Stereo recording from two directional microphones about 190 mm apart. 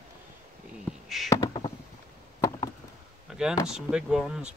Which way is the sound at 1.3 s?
20° left (ahead or behind).